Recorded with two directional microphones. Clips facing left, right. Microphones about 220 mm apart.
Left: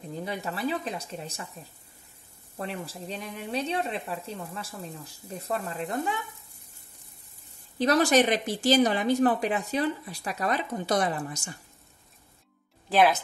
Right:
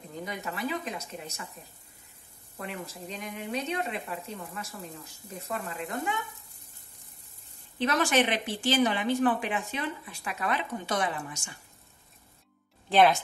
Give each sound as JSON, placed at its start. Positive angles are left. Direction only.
{"t": 0.2, "sound": "speech", "side_deg": 35}
{"t": 2.6, "sound": "speech", "side_deg": 35}
{"t": 7.8, "sound": "speech", "side_deg": 40}
{"t": 12.9, "sound": "speech", "side_deg": 5}